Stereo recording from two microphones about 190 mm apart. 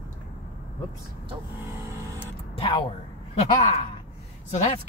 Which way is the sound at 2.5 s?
30° left (ahead or behind).